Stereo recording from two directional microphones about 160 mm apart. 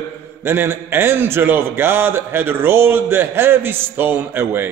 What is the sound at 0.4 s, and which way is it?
A man's voice, 15° right (ahead or behind).